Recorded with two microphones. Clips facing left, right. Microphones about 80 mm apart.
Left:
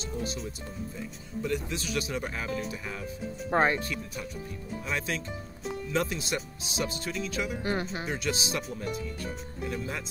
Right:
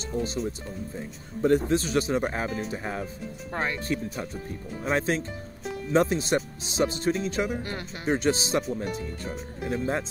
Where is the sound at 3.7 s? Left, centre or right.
Right.